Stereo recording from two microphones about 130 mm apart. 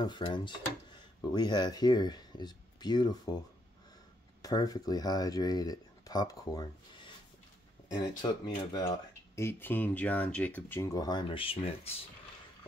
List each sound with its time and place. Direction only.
0.0 s speech: 35° left (ahead or behind)
4.4 s speech: 30° left (ahead or behind); by 10.9 s 15° left (ahead or behind)
11.0 s speech: 35° left (ahead or behind)